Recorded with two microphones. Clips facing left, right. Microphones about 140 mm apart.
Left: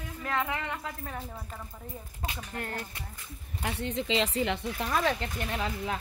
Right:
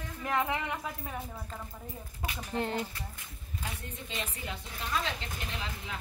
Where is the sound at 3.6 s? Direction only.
85° left; by 6.0 s 55° left (ahead or behind).